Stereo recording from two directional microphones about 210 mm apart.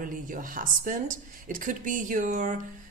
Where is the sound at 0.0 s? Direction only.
40° right (ahead or behind).